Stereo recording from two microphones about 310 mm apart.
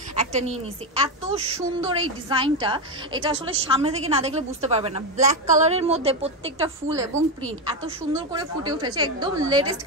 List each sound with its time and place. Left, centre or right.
0.1 s a woman's voice: right